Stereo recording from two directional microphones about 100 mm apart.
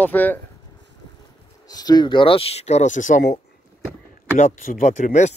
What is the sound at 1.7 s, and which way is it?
Speech, 40° left (ahead or behind).